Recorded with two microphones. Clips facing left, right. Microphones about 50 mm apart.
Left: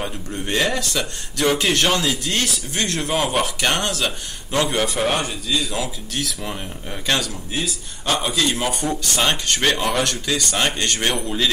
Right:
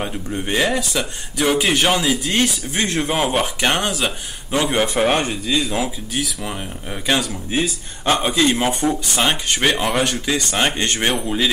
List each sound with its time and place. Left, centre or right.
0.0 s speech: centre
6.1 s speech: centre
7.5 s speech: right
8.8 s speech: centre